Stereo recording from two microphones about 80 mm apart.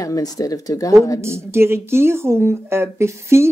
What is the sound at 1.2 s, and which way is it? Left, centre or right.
A woman's voice, right.